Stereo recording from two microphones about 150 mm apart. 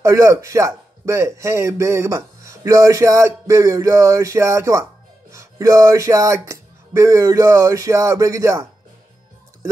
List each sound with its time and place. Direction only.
0.0 s a man's voice: 20° right (ahead or behind)